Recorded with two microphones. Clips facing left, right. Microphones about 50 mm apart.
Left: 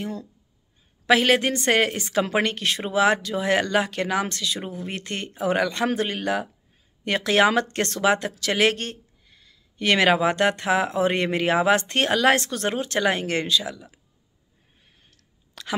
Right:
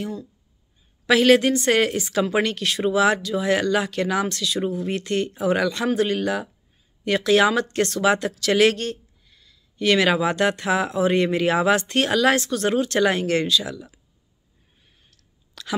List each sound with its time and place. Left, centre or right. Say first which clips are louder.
1.0 s speech: right 3 dB; left
8.0 s speech: left 1 dB; left
15.0 s clicking: left 1 dB; left